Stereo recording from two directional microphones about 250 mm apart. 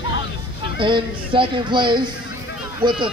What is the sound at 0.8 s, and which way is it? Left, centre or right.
Speech, centre.